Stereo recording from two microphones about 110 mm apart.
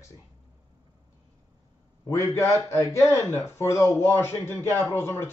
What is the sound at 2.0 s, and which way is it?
A man's voice, 25° left (ahead or behind).